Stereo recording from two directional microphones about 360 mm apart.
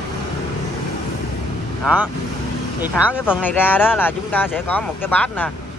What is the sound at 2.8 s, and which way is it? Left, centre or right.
Speech, centre.